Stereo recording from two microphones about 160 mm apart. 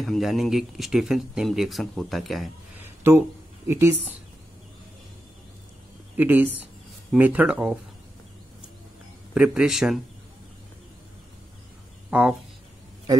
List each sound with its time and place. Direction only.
0.0 s speech: centre (ahead or behind)
3.0 s speech: 15° right (ahead or behind)
6.1 s speech: 10° right (ahead or behind)
9.3 s speech: 5° right (ahead or behind)
12.1 s speech: 10° right (ahead or behind)